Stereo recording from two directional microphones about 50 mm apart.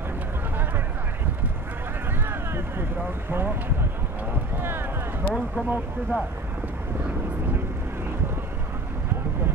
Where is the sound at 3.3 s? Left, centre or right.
Right.